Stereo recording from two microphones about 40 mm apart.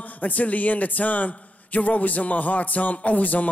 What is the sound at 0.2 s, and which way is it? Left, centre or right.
A man's voice, left.